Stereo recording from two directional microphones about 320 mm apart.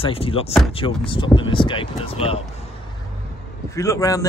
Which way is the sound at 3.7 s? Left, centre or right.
Centre.